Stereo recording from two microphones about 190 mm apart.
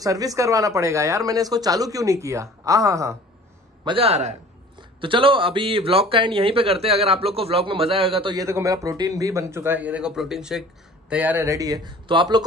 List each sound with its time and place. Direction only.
0.0 s speech: 20° right (ahead or behind)
3.8 s a man's voice: 30° right (ahead or behind)